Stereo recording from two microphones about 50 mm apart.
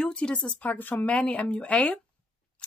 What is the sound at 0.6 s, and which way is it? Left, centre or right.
Speech, left.